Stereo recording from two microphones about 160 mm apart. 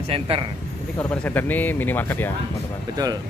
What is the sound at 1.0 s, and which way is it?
Speech, 10° left (ahead or behind).